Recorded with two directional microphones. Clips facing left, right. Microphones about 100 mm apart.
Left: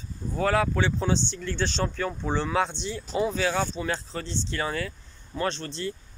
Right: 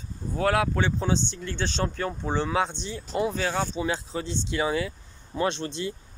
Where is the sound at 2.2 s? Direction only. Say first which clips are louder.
Even; 20° right (ahead or behind).